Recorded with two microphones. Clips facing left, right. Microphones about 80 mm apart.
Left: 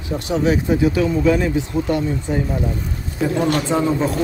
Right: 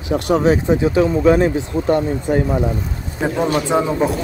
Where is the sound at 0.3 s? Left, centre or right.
Right.